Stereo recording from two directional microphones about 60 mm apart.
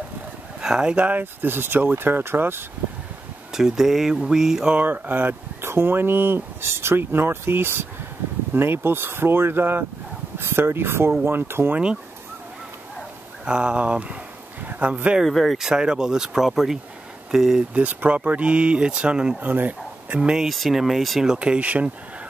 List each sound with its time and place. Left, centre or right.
0.6 s speech: centre
1.0 s speech: right
3.5 s speech: centre
4.7 s speech: right
13.5 s speech: centre
14.6 s a sound: right
15.2 s speech: centre
17.7 s speech: right
19.4 s speech: right
20.1 s speech: centre
20.4 s speech: centre
21.4 s speech: right